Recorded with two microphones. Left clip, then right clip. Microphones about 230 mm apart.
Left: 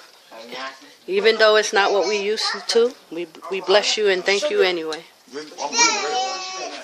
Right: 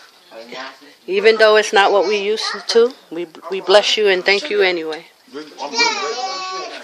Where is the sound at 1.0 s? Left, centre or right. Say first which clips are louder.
Right 4 dB; centre.